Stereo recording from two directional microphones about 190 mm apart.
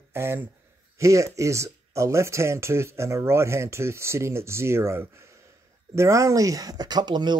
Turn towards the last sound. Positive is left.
turn(degrees=-25)  # may be behind; listen again after turning